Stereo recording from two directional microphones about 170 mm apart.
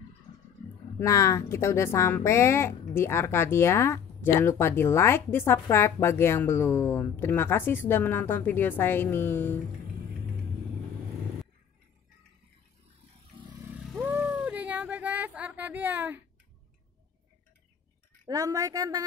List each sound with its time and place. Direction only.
0.9 s speech: 20° left (ahead or behind)
13.7 s cat: 5° right (ahead or behind)
18.2 s a woman's voice: 20° right (ahead or behind)